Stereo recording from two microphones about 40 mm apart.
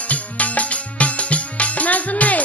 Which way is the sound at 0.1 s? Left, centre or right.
Left.